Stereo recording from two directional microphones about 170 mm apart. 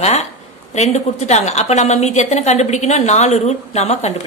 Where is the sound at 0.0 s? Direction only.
40° left (ahead or behind).